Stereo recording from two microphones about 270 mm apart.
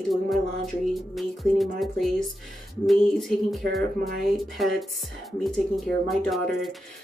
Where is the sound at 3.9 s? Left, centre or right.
Right.